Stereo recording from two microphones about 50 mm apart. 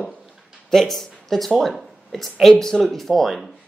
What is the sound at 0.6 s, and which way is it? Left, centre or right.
Speech, centre.